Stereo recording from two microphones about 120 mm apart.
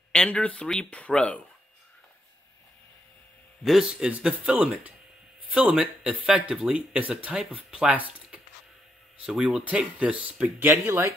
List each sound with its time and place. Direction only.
0.1 s speech: 10° left (ahead or behind)
3.6 s speech: 5° right (ahead or behind)
9.2 s speech: 5° right (ahead or behind)
10.7 s speech: 20° right (ahead or behind)